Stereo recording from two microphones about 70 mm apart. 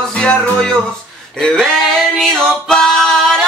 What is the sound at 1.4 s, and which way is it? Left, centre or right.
Male singing, centre.